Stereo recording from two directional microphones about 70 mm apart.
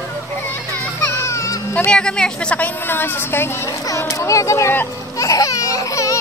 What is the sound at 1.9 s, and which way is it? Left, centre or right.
Speech, centre.